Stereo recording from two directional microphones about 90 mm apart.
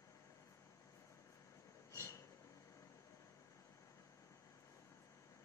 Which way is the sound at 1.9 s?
35° left (ahead or behind).